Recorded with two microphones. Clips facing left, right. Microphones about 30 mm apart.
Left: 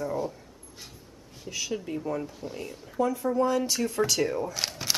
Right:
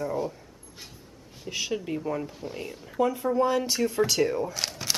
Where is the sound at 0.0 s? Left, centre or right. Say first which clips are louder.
Right 1 dB; centre.